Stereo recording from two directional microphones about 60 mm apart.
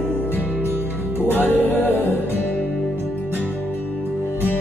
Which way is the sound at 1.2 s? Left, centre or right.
Left.